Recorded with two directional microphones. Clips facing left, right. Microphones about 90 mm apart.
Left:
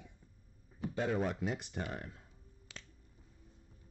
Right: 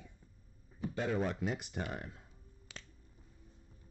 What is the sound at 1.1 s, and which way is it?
Speech, 5° left (ahead or behind).